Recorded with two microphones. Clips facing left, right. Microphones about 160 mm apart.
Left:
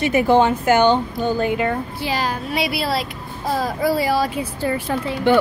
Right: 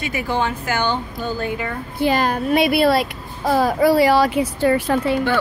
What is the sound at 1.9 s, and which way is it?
A child's voice, 55° right (ahead or behind).